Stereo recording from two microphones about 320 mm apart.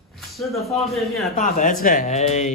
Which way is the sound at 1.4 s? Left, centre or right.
Left.